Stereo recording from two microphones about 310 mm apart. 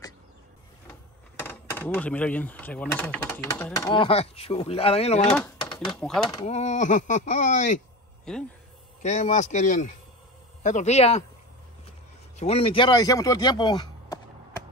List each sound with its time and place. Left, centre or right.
1.4 s speech: centre
5.9 s speech: centre
6.3 s speech: left
8.3 s speech: centre
9.0 s speech: left
12.4 s speech: centre